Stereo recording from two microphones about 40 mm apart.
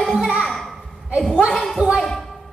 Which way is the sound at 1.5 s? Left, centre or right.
Centre.